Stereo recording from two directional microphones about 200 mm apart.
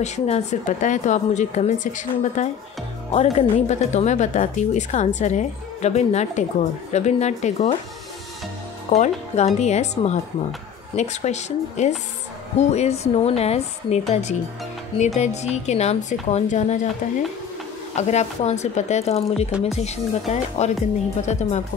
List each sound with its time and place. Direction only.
0.0 s speech: 35° left (ahead or behind)
8.9 s speech: 35° left (ahead or behind)
17.9 s speech: 35° left (ahead or behind)